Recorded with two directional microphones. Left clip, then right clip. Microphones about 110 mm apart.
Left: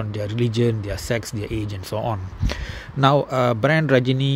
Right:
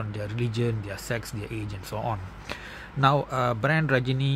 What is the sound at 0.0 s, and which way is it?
Speech, 40° left (ahead or behind).